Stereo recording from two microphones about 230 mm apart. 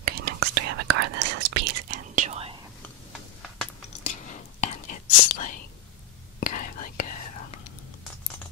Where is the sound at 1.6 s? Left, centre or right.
Right.